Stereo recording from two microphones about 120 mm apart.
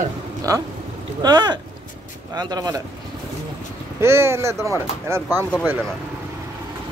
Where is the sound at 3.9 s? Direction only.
20° right (ahead or behind).